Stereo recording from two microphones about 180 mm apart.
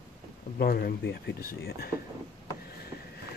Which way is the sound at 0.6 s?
60° left (ahead or behind).